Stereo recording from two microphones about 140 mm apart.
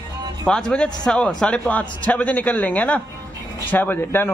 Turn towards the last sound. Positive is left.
turn(degrees=15)  # may be behind; listen again after turning